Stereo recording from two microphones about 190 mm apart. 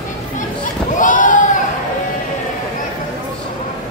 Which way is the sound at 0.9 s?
40° left (ahead or behind).